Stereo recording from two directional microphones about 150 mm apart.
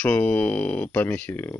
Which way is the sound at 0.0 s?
10° left (ahead or behind).